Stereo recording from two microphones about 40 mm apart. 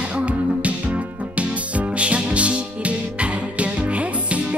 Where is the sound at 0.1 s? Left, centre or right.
Right.